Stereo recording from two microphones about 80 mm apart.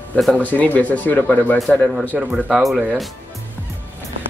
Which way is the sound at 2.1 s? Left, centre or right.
Centre.